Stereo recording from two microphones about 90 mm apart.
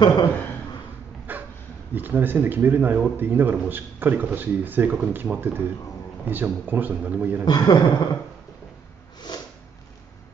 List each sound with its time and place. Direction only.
0.0 s speech: 50° left (ahead or behind)
1.3 s dog: 20° right (ahead or behind)
2.0 s speech: 20° right (ahead or behind)
7.4 s a man's voice: 50° left (ahead or behind)